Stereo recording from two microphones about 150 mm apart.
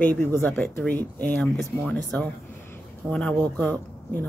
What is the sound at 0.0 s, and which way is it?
Speech, 15° left (ahead or behind).